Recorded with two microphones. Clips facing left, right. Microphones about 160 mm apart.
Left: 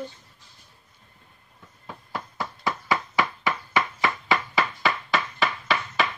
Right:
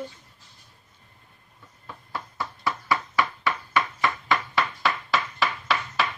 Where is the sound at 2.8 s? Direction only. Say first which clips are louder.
Even; 15° left (ahead or behind).